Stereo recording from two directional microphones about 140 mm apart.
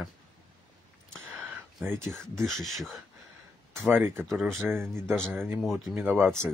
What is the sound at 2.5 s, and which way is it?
Speech, centre (ahead or behind).